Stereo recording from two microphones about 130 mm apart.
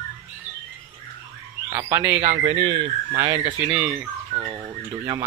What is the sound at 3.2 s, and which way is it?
Speech, 25° right (ahead or behind).